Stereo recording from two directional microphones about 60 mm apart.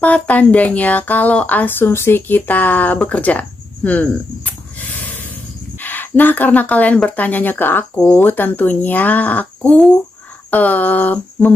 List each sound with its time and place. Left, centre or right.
0.0 s speech: left
3.0 s a sound: left
5.8 s speech: left